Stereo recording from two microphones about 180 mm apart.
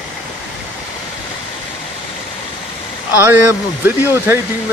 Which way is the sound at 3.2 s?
10° right (ahead or behind).